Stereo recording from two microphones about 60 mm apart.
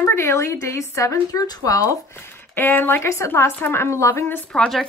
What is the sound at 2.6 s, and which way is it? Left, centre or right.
Speech, left.